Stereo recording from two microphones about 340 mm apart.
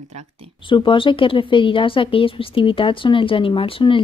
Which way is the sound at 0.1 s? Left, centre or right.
Centre.